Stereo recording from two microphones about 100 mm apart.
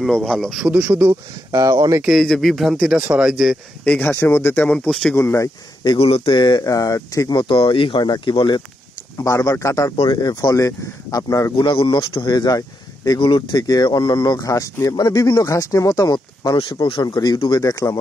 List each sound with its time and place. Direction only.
0.0 s speech: 5° left (ahead or behind)
0.7 s speech: 15° right (ahead or behind)
1.5 s speech: 40° right (ahead or behind)
2.0 s speech: 5° left (ahead or behind)
3.8 s speech: 10° left (ahead or behind)
4.1 s speech: 25° left (ahead or behind); by 5.1 s 10° left (ahead or behind)
5.1 s speech: 30° left (ahead or behind)
5.9 s speech: 75° left (ahead or behind)
6.3 s speech: 50° left (ahead or behind)
6.6 s speech: 35° left (ahead or behind); by 8.6 s 50° left (ahead or behind)
9.2 s speech: 35° left (ahead or behind)
10.0 s speech: 45° left (ahead or behind)
11.5 s speech: 60° left (ahead or behind); by 17.9 s 35° left (ahead or behind)